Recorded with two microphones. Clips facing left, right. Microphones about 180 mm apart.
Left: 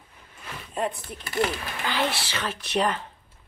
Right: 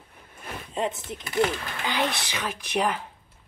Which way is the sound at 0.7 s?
20° right (ahead or behind).